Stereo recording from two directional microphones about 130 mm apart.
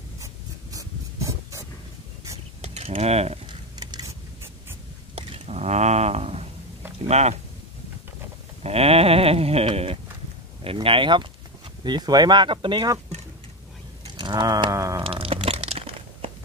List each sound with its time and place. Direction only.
0.2 s writing: 25° right (ahead or behind)
2.3 s mechanisms: 55° right (ahead or behind)
3.4 s a sound: 30° right (ahead or behind)
5.1 s a sound: 55° right (ahead or behind)
7.0 s speech: 55° right (ahead or behind)
8.6 s a sound: 50° right (ahead or behind)
11.8 s speech: 35° right (ahead or behind)
14.0 s sheep: 35° right (ahead or behind)
15.0 s crumpling: 45° right (ahead or behind)